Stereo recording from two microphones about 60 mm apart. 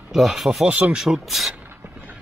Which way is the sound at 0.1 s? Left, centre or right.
Centre.